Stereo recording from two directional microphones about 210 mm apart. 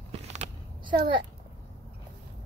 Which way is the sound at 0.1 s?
30° right (ahead or behind).